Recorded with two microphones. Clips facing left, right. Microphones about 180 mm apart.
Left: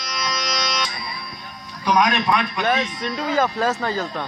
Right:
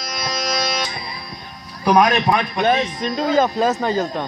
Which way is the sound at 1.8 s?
45° right (ahead or behind).